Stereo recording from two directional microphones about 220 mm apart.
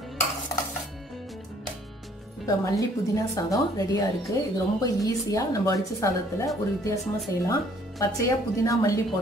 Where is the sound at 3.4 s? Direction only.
15° left (ahead or behind).